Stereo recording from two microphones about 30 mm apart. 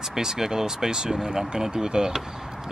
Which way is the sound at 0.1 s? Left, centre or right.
Centre.